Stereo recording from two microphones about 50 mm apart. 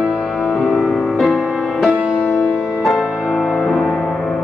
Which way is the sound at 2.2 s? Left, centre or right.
Left.